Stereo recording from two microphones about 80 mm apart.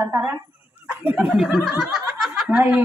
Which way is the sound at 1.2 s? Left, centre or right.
Centre.